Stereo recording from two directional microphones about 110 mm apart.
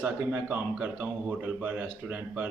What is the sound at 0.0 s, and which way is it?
A man's voice, 15° right (ahead or behind).